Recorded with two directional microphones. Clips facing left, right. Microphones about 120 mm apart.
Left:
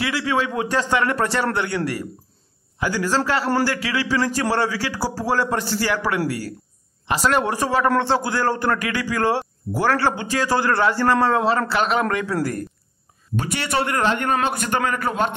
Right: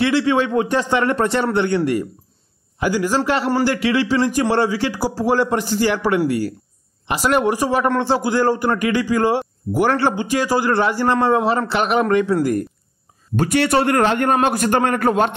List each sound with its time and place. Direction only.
0.0 s a man's voice: 25° right (ahead or behind)
2.8 s a man's voice: 15° right (ahead or behind)
13.4 s a man's voice: 50° right (ahead or behind)